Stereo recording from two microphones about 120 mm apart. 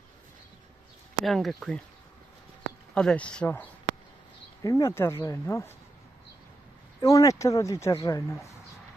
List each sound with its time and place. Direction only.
1.2 s speech: centre (ahead or behind)
2.9 s speech: 10° left (ahead or behind)
4.6 s a woman's voice: 25° left (ahead or behind)
7.0 s a woman's voice: 25° left (ahead or behind)